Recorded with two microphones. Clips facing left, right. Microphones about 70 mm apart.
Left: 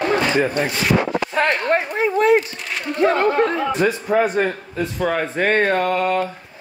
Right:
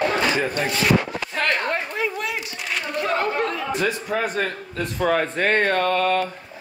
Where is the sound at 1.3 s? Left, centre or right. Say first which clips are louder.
Left 4 dB; left.